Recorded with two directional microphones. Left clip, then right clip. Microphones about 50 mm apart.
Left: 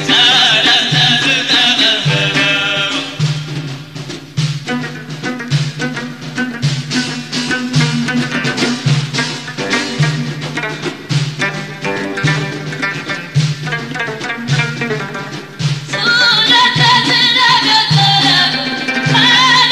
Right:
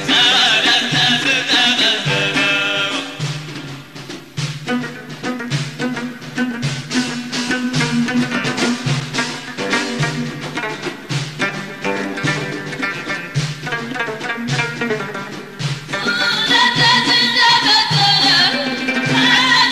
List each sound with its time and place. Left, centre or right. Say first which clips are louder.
0.0 s music: left 3 dB; right
5.2 s music: left 3 dB; right